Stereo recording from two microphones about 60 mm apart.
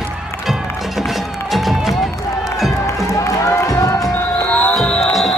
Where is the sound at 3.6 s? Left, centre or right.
Left.